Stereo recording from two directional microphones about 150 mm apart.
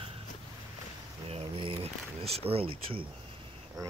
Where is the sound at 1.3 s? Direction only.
35° right (ahead or behind).